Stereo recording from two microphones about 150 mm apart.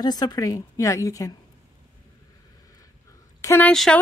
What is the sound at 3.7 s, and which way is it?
Speech, 5° left (ahead or behind).